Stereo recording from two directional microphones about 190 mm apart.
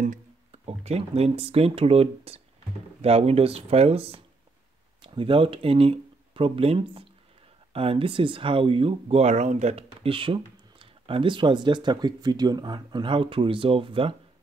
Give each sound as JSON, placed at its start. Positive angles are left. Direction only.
{"t": 0.0, "sound": "speech", "side_deg": -35}